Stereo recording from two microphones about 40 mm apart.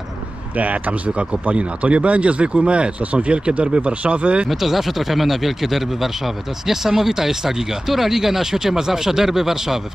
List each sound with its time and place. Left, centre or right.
0.6 s speech: right
4.5 s speech: centre